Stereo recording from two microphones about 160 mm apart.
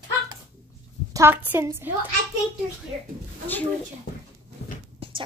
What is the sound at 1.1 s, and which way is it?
Speech, 15° right (ahead or behind).